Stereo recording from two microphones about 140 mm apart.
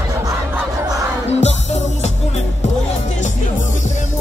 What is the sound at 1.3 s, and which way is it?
Music, 55° left (ahead or behind).